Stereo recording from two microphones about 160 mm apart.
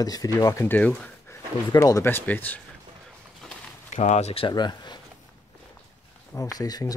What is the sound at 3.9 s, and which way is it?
Speech, 45° left (ahead or behind).